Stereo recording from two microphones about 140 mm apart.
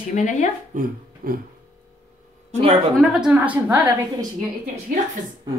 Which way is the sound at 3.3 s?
15° right (ahead or behind).